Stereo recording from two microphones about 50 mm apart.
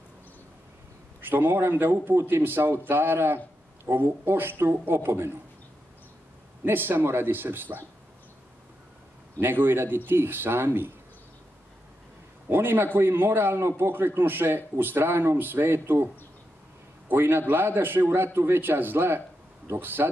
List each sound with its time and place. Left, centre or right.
1.2 s speech: right
6.6 s speech: right
9.4 s speech: right
12.4 s speech: right
17.1 s speech: right